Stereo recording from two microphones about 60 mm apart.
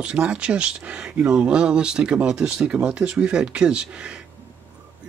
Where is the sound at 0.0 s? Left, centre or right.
Centre.